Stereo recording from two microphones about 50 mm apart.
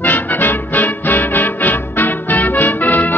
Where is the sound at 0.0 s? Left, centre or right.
Left.